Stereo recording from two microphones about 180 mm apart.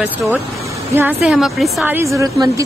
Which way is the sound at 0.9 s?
10° right (ahead or behind).